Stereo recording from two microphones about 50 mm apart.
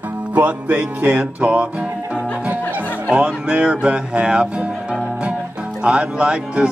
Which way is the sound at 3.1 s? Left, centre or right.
Right.